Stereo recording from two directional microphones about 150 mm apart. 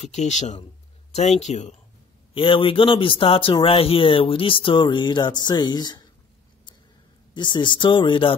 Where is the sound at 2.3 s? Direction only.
35° left (ahead or behind).